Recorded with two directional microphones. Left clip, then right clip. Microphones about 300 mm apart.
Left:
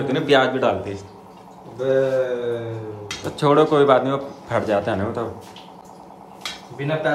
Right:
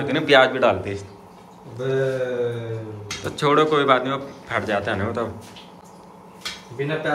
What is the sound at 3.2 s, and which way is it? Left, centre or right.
A man's voice, centre.